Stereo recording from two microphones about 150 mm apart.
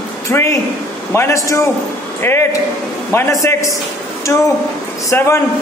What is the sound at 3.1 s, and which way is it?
A man's voice, 20° left (ahead or behind).